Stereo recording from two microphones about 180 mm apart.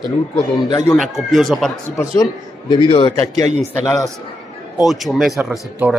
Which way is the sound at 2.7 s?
25° left (ahead or behind).